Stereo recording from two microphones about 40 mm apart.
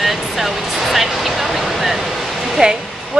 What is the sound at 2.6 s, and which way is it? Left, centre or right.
Speech, centre.